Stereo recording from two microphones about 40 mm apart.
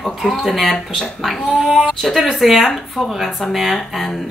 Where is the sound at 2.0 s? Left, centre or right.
Centre.